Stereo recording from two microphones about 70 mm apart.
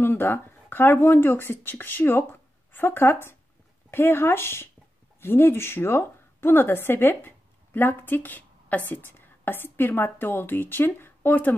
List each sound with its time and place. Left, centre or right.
0.0 s a woman's voice: left